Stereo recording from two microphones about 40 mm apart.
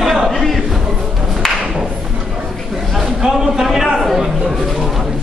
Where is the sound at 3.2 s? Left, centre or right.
Centre.